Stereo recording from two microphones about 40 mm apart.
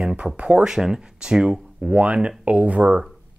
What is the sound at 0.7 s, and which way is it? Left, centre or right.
Speech, centre.